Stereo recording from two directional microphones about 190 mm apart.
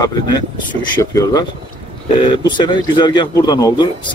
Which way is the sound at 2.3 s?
25° left (ahead or behind).